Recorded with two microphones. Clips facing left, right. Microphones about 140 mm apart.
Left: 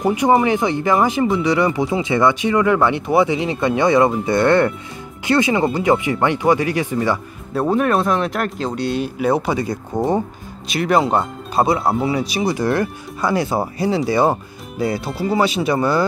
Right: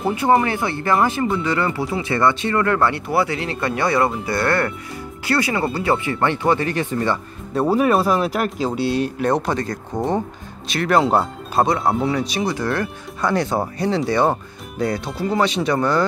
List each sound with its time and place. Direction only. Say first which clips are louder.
0.0 s speech: left 2 dB; 15° left (ahead or behind)
7.5 s speech: even; 5° right (ahead or behind)